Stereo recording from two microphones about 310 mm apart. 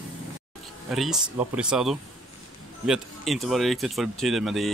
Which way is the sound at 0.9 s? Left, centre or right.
Centre.